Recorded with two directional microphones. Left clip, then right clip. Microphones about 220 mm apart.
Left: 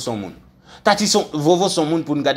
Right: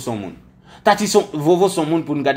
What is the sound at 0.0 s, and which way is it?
Speech, 10° left (ahead or behind).